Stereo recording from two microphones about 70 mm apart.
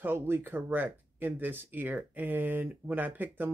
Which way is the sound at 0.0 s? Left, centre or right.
Right.